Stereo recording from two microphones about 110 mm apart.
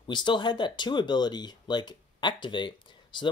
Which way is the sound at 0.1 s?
45° left (ahead or behind).